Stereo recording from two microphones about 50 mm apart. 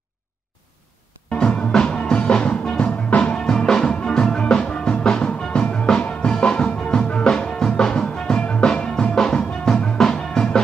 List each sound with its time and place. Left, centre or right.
1.3 s music: left